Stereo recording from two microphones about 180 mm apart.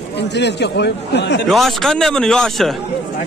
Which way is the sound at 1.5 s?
Centre (ahead or behind).